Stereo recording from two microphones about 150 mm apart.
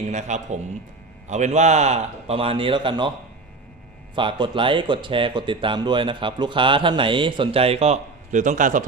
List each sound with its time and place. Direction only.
0.1 s a man's voice: 50° right (ahead or behind); by 3.1 s 30° right (ahead or behind)
4.1 s speech: 30° right (ahead or behind); by 8.8 s 60° right (ahead or behind)